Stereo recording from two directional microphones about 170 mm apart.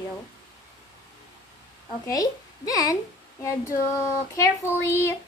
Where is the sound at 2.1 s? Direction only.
20° left (ahead or behind).